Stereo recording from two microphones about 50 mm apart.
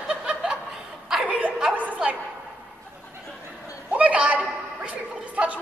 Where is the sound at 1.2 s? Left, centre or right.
Right.